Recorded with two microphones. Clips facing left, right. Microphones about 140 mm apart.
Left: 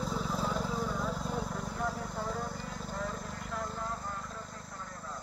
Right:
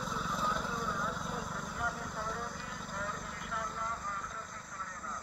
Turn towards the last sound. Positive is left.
turn(degrees=35)  # may be behind; listen again after turning